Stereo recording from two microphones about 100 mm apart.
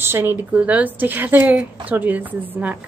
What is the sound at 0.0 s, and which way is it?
A woman's voice, 25° right (ahead or behind).